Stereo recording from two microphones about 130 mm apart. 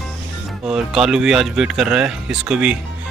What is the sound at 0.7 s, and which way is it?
Speech, 5° right (ahead or behind).